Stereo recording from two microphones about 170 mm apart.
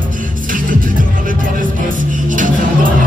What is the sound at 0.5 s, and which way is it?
Music, 55° right (ahead or behind).